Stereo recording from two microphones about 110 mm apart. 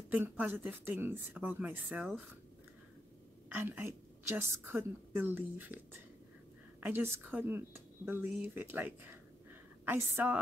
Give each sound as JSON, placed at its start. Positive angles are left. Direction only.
{"t": 0.1, "sound": "a woman's voice", "side_deg": -15}
{"t": 3.5, "sound": "a woman's voice", "side_deg": -20}
{"t": 6.8, "sound": "a woman's voice", "side_deg": -20}